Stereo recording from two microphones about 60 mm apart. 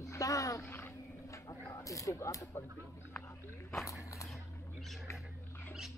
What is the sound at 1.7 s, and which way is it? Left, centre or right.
Speech, left.